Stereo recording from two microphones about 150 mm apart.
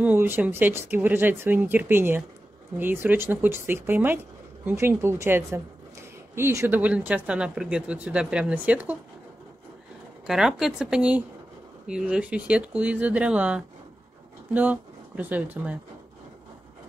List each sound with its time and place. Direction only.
0.0 s speech: 15° right (ahead or behind)
10.2 s speech: 5° right (ahead or behind)